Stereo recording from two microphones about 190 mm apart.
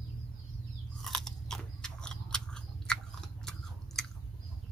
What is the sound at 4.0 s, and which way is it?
Chewing, 5° left (ahead or behind).